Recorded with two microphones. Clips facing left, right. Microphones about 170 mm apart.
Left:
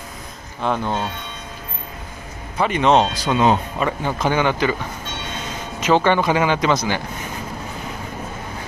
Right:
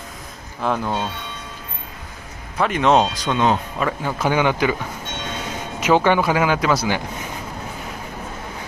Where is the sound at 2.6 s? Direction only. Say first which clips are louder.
Even; centre (ahead or behind).